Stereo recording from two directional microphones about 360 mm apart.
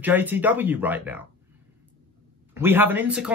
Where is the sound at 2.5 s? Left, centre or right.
Centre.